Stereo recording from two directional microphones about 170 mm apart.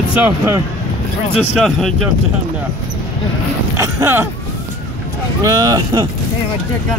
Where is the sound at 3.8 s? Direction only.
15° right (ahead or behind).